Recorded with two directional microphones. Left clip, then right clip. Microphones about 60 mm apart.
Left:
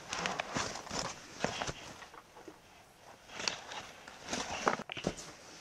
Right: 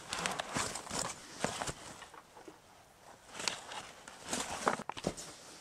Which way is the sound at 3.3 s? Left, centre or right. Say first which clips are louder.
Left 1 dB; centre.